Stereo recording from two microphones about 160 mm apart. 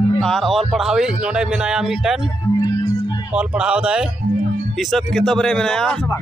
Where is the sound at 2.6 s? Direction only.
20° left (ahead or behind).